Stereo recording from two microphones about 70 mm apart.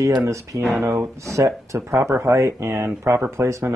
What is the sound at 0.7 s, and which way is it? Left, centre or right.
Speech, right.